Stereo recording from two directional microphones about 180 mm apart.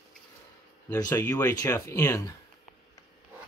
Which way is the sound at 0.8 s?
20° left (ahead or behind).